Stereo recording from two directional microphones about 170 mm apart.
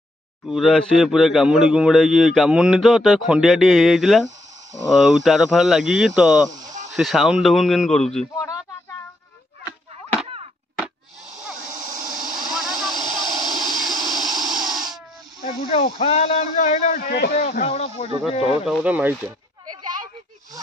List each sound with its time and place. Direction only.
0.5 s a man's voice: centre (ahead or behind)
10.8 s a sound: 5° right (ahead or behind)
12.4 s vehicle: centre (ahead or behind)
12.9 s vehicle: 25° right (ahead or behind)
13.6 s a sound: centre (ahead or behind)
14.1 s a sound: 25° right (ahead or behind)
15.4 s a man's voice: 45° left (ahead or behind); by 17.4 s 65° left (ahead or behind)
17.4 s speech: 45° left (ahead or behind)
18.9 s speech: 10° right (ahead or behind)